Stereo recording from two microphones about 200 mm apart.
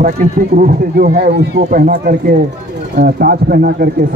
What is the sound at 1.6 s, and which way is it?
Speech, 45° right (ahead or behind).